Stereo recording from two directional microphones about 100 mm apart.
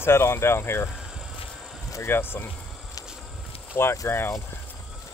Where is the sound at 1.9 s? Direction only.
25° left (ahead or behind).